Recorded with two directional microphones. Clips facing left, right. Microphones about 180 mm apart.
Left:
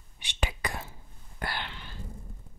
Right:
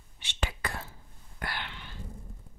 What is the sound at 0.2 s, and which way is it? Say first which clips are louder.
Whispering: left 2 dB; 15° left (ahead or behind).